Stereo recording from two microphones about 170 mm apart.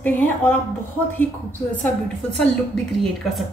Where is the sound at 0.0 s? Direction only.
10° left (ahead or behind).